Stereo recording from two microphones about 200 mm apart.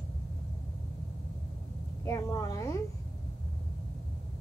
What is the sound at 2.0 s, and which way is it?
Speech, 15° left (ahead or behind).